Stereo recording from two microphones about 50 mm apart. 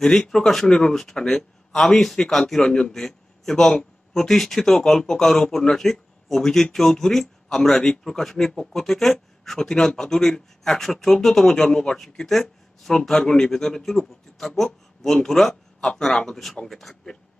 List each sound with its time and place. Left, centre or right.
0.0 s speech: centre
0.9 s speech: centre